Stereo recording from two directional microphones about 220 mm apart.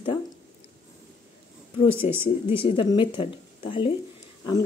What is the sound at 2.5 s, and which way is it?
Speech, 25° left (ahead or behind).